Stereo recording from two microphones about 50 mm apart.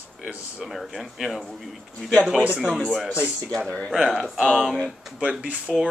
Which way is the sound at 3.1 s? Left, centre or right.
Right.